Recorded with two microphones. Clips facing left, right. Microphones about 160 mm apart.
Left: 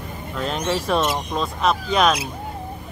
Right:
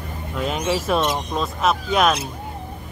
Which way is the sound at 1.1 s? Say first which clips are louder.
Even; centre (ahead or behind).